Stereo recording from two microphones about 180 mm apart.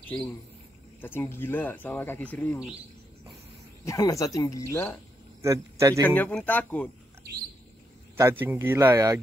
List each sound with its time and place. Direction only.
0.0 s speech: 10° left (ahead or behind)
3.8 s speech: 20° left (ahead or behind)
5.4 s speech: 15° right (ahead or behind)
6.0 s speech: 10° left (ahead or behind)
8.2 s speech: 10° right (ahead or behind)